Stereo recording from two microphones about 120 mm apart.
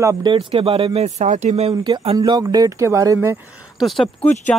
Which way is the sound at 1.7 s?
40° right (ahead or behind).